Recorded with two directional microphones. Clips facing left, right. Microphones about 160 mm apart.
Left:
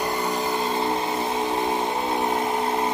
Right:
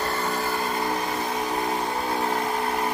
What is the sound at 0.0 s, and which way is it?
Vehicle, 15° left (ahead or behind).